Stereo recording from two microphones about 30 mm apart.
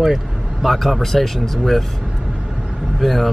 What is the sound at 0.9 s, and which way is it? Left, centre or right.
Speech, centre.